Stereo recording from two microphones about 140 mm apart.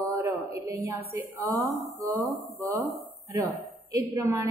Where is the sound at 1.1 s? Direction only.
20° right (ahead or behind).